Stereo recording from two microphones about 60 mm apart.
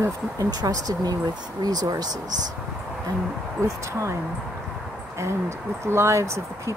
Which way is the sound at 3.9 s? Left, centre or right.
Right.